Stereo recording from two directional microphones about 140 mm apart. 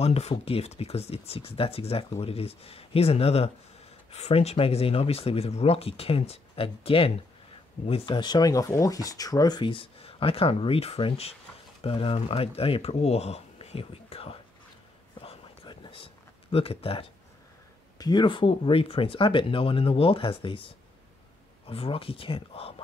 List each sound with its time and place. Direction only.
0.0 s speech: 45° left (ahead or behind)
15.1 s a sound: 35° left (ahead or behind)
16.5 s speech: 40° left (ahead or behind)
17.9 s speech: 30° left (ahead or behind)